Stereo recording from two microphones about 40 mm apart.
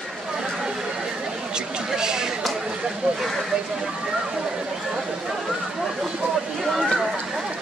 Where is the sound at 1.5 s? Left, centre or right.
Centre.